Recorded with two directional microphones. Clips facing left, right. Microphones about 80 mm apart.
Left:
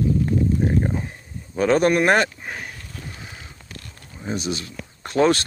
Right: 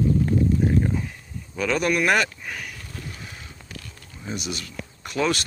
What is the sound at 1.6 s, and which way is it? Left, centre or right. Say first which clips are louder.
Speech: left 5 dB; left.